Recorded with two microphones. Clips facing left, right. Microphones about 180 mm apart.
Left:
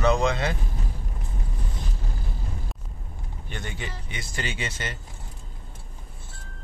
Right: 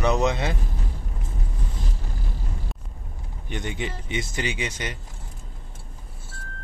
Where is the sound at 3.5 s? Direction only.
20° right (ahead or behind).